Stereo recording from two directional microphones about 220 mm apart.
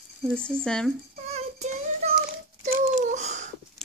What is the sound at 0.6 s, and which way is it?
Speech, 5° left (ahead or behind).